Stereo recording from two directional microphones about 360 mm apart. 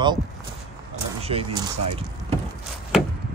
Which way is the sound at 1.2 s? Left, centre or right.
Centre.